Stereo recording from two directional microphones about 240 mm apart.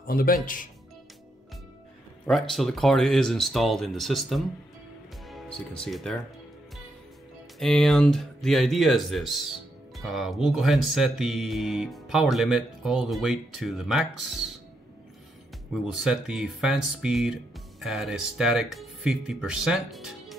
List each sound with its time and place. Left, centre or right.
0.0 s speech: left
2.2 s speech: centre
7.5 s speech: centre
15.7 s speech: centre